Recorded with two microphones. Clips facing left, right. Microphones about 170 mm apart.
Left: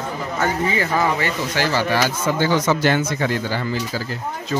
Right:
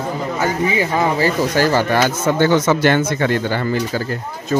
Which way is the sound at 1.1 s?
40° right (ahead or behind).